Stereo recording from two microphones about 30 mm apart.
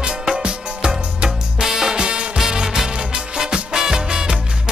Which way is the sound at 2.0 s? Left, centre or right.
Right.